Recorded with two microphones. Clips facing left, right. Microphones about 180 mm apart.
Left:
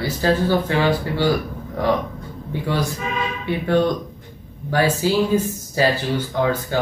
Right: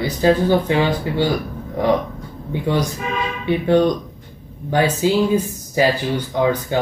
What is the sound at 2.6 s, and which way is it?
Speech, 20° right (ahead or behind).